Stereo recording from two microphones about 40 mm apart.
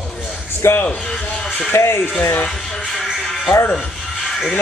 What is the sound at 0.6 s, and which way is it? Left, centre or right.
Speech, left.